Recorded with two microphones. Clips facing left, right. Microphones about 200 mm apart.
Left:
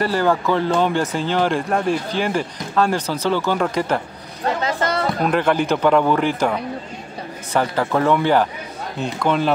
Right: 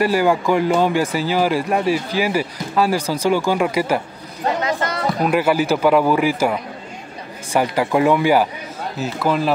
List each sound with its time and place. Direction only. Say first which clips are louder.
0.0 s speech: right 2 dB; 10° right (ahead or behind)
4.6 s a sound: left 1 dB; 30° left (ahead or behind)
5.2 s speech: right 2 dB; 5° right (ahead or behind)